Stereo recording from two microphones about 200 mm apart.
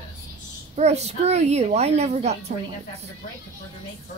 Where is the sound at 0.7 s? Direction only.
35° right (ahead or behind).